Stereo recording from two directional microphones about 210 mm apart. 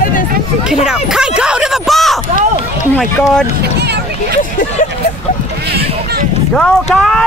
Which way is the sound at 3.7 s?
50° right (ahead or behind).